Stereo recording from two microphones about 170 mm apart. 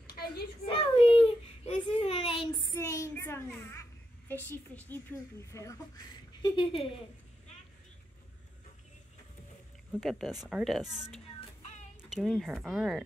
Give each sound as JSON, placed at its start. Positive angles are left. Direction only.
{"t": 0.7, "sound": "a child's voice", "side_deg": 30}
{"t": 2.7, "sound": "a woman's voice", "side_deg": 15}
{"t": 6.4, "sound": "speech", "side_deg": 30}
{"t": 9.9, "sound": "a woman's voice", "side_deg": 0}